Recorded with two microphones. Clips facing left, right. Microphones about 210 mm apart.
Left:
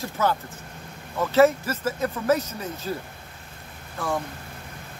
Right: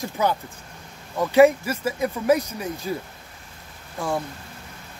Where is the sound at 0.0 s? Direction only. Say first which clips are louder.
Right 1 dB; 15° right (ahead or behind).